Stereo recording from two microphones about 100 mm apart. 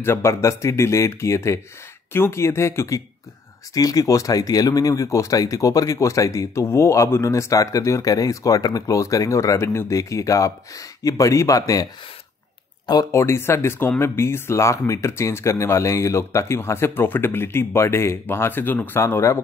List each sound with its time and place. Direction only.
0.0 s speech: 25° left (ahead or behind)
3.7 s speech: 40° left (ahead or behind)
13.1 s speech: 25° left (ahead or behind)